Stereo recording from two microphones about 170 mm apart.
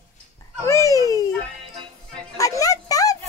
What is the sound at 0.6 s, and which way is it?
Babbling, 15° left (ahead or behind).